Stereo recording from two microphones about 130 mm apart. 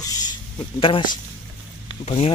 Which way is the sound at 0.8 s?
40° left (ahead or behind).